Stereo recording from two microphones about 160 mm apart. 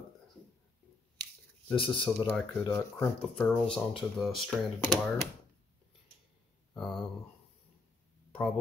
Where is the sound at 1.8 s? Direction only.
30° left (ahead or behind).